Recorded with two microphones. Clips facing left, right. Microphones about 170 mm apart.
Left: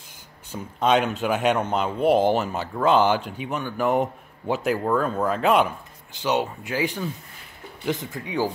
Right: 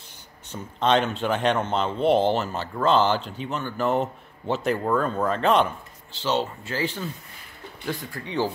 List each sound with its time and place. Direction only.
0.5 s speech: 10° left (ahead or behind)